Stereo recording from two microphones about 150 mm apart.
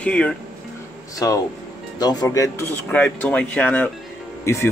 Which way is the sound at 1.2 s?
25° left (ahead or behind).